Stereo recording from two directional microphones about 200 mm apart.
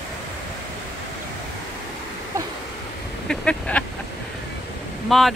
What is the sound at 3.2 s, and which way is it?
Duck, 5° left (ahead or behind).